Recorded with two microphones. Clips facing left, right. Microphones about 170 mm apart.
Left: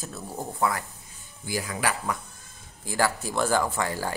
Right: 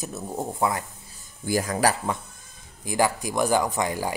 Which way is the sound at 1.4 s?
45° right (ahead or behind).